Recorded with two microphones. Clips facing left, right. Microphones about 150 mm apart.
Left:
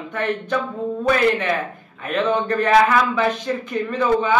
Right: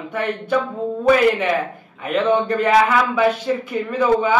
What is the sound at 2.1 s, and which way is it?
A woman's voice, 10° right (ahead or behind).